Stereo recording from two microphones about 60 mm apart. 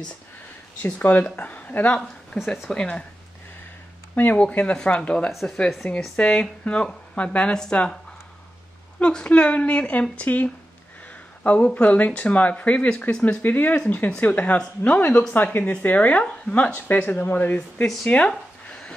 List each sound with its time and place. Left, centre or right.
1.0 s speech: left
2.3 s speech: centre
2.7 s speech: centre
4.1 s speech: left
9.0 s speech: centre
18.7 s a sound: centre